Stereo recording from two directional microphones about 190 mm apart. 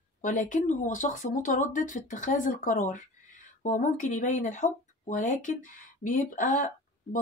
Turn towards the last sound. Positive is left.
turn(degrees=45)  # may be behind; listen again after turning